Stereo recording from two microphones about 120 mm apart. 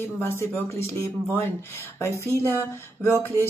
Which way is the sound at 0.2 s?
20° left (ahead or behind).